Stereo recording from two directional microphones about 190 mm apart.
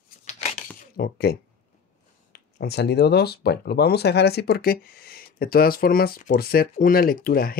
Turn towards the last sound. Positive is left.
turn(degrees=50)  # may be behind; listen again after turning